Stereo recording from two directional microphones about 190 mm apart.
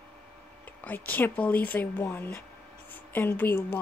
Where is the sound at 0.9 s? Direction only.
10° left (ahead or behind).